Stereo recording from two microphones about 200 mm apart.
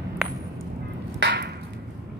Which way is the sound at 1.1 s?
55° right (ahead or behind).